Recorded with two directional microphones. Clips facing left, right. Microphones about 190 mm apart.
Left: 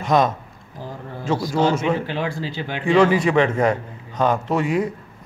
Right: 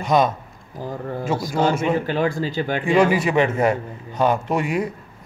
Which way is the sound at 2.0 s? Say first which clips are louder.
Right 4 dB; 45° right (ahead or behind).